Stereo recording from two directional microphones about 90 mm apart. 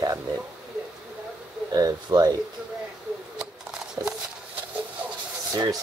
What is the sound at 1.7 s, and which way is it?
Speech, 45° right (ahead or behind).